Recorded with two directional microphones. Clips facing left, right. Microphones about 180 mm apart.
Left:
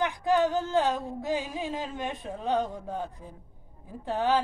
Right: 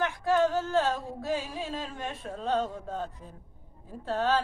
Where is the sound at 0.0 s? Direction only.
15° left (ahead or behind).